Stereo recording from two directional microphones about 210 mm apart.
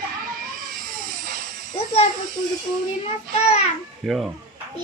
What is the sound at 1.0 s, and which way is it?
Music, 40° right (ahead or behind).